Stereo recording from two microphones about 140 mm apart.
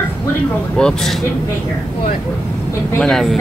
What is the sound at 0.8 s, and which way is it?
Speech, 5° left (ahead or behind).